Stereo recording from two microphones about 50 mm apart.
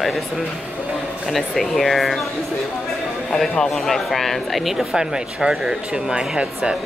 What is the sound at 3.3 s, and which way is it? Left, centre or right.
Speech, centre.